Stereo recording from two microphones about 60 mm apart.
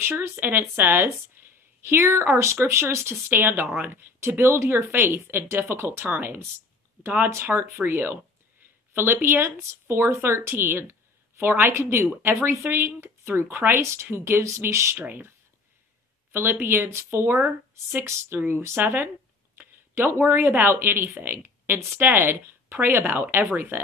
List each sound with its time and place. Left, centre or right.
0.2 s a woman's voice: right
3.3 s a woman's voice: right
7.4 s a woman's voice: right
15.0 s speech: right
16.3 s a woman's voice: right